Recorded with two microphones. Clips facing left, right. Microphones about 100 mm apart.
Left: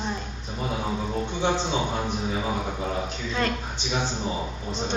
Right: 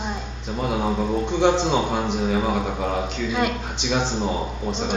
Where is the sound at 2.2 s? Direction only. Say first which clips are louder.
Right 6 dB; 60° right (ahead or behind).